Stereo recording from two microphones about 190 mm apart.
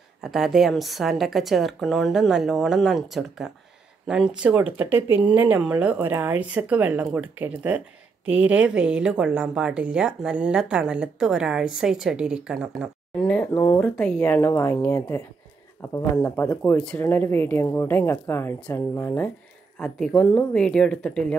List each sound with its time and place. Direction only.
0.2 s a woman's voice: centre (ahead or behind)